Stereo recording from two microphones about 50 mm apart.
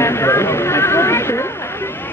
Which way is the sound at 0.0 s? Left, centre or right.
Left.